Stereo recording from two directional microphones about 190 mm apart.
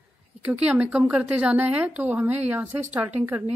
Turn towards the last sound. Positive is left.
turn(degrees=-10)  # may be behind; listen again after turning